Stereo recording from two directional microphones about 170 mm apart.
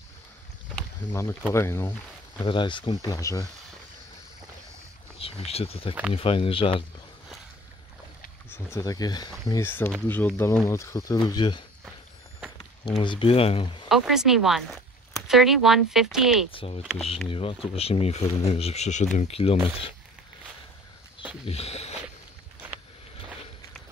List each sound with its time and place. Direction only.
1.5 s speech: 15° left (ahead or behind)
2.4 s speech: 30° left (ahead or behind)
5.2 s speech: 35° left (ahead or behind)
8.5 s speech: 15° left (ahead or behind)
13.0 s speech: 30° left (ahead or behind)
13.8 s speech: centre (ahead or behind)
16.5 s speech: 35° left (ahead or behind)
16.8 s speech: 5° right (ahead or behind)
17.3 s speech: 35° left (ahead or behind)
21.5 s speech: 35° left (ahead or behind)